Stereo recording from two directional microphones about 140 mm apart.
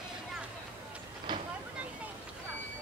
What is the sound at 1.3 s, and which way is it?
Vehicle, 35° right (ahead or behind).